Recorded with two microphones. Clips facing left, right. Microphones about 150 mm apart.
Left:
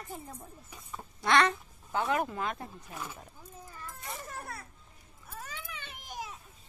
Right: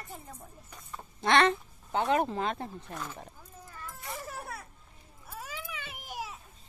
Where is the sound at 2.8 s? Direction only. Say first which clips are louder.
Right 2 dB; 5° left (ahead or behind).